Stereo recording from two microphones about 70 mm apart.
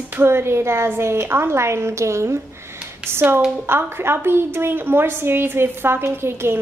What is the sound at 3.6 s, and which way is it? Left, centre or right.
A woman's voice, right.